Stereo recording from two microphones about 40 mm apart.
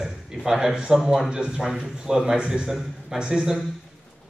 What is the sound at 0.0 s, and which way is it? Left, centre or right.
Speech, centre.